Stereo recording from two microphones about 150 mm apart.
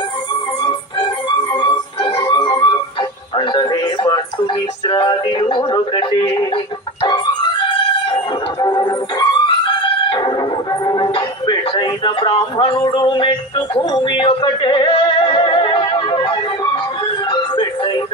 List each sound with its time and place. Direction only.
0.6 s music: 30° left (ahead or behind)
4.8 s a sound: 30° left (ahead or behind)
8.5 s music: 30° left (ahead or behind)